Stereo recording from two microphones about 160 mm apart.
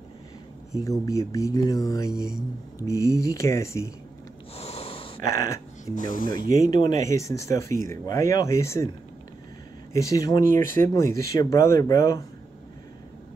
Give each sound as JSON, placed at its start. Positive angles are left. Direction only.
{"t": 0.7, "sound": "speech", "side_deg": 20}
{"t": 4.6, "sound": "snort", "side_deg": 40}
{"t": 5.3, "sound": "speech", "side_deg": 20}
{"t": 9.9, "sound": "speech", "side_deg": 20}